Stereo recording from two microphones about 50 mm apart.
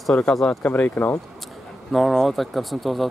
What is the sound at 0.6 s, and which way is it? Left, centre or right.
Speech, left.